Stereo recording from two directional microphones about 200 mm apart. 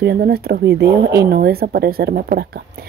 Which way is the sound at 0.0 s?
55° right (ahead or behind).